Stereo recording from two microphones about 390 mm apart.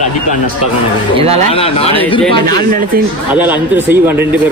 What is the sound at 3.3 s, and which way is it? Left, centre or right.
Speech, centre.